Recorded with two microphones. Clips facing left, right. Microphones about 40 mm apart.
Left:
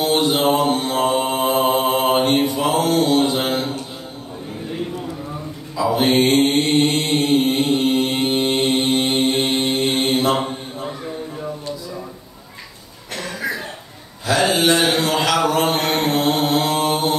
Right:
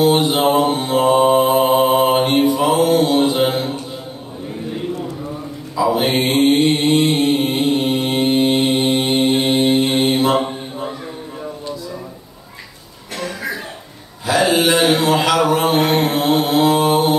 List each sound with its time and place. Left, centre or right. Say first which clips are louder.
0.0 s mantra: right 3 dB; centre
5.8 s mantra: even; centre
14.2 s mantra: right 2 dB; centre